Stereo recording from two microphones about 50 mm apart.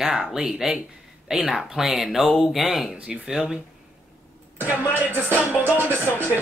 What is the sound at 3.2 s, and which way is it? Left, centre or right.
Speech, centre.